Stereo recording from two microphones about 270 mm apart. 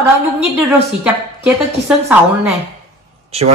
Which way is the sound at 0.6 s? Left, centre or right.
Centre.